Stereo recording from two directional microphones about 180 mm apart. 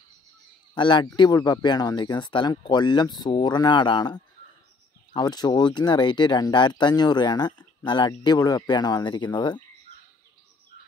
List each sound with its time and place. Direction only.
0.7 s speech: 25° left (ahead or behind)